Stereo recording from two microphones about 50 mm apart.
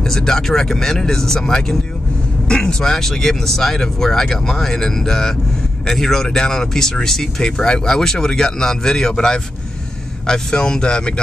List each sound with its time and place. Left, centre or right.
0.0 s speech: centre